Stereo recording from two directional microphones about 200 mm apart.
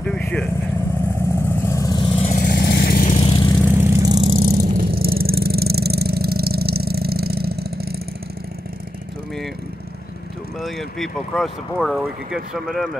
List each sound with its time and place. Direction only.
0.0 s vehicle: 5° left (ahead or behind); by 2.4 s 30° left (ahead or behind)
2.4 s vehicle: 50° left (ahead or behind)
3.2 s vehicle: 25° left (ahead or behind)
3.6 s vehicle: 10° right (ahead or behind)
4.3 s vehicle: 45° right (ahead or behind)
10.6 s speech: centre (ahead or behind)